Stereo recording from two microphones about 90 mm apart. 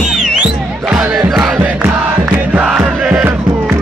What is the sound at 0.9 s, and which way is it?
Crowd, 5° right (ahead or behind).